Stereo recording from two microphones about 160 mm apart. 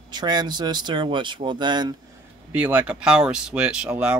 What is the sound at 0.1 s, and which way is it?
Speech, 25° right (ahead or behind).